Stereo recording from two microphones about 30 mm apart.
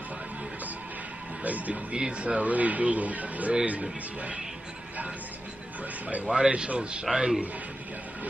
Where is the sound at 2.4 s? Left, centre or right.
Right.